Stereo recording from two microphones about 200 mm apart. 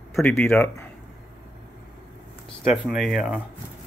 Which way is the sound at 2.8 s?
Centre (ahead or behind).